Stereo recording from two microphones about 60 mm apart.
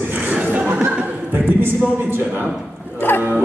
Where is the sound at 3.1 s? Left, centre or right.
Left.